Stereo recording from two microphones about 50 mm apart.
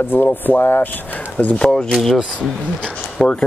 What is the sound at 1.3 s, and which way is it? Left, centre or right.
Speech, left.